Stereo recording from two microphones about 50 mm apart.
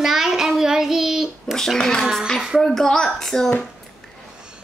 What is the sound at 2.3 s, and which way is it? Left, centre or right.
Speech, centre.